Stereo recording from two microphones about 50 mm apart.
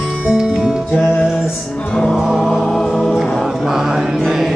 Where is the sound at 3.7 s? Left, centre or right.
Centre.